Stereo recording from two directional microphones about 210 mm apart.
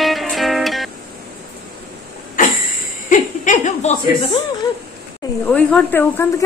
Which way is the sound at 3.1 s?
40° left (ahead or behind).